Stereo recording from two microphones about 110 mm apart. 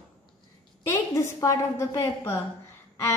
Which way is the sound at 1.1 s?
30° left (ahead or behind).